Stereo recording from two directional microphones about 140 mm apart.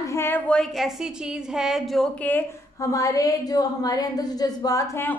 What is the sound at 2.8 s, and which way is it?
A woman's voice, 25° left (ahead or behind).